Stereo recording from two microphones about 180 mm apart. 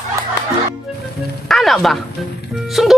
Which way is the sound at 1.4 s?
Centre (ahead or behind).